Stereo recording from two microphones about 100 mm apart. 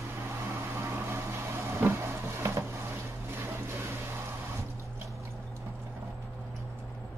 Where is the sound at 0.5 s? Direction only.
30° right (ahead or behind).